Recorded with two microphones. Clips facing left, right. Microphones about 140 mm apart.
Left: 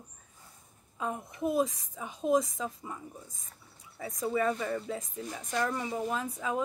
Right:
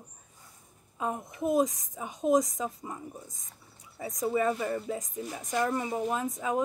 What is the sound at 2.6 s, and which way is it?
Speech, 20° right (ahead or behind).